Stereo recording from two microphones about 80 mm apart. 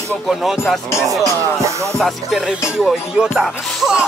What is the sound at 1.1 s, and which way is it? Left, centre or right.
Speech, right.